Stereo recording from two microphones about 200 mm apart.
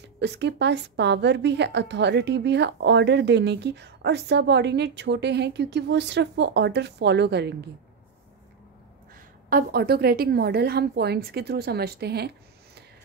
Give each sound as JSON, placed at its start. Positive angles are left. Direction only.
{"t": 0.2, "sound": "a woman's voice", "side_deg": -60}
{"t": 9.5, "sound": "a woman's voice", "side_deg": -45}